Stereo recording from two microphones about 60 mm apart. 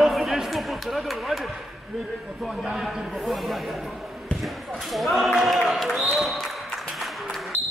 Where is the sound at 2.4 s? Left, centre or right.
Centre.